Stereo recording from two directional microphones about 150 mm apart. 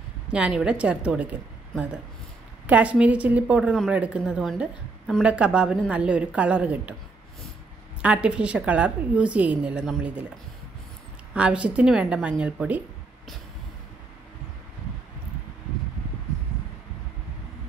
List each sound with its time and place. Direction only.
0.3 s a woman's voice: 5° right (ahead or behind)
2.6 s a woman's voice: 10° right (ahead or behind)
8.0 s a woman's voice: 10° right (ahead or behind)
11.3 s a woman's voice: 10° right (ahead or behind)